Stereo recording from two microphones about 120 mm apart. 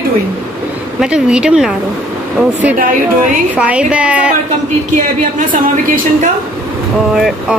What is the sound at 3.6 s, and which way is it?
Speech, 10° right (ahead or behind).